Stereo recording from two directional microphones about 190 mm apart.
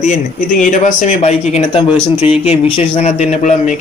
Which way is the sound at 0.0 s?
40° left (ahead or behind).